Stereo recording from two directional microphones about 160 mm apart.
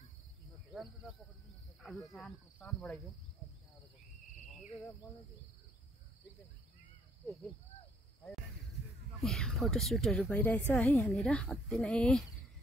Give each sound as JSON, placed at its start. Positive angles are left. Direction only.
{"t": 1.8, "sound": "speech", "side_deg": 0}
{"t": 9.2, "sound": "a woman's voice", "side_deg": 0}